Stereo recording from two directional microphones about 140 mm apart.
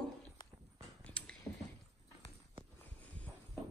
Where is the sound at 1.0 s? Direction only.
10° left (ahead or behind).